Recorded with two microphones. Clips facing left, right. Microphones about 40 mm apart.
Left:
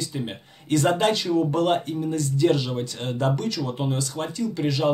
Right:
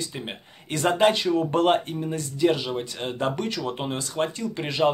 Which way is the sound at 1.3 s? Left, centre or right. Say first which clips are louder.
Even; right.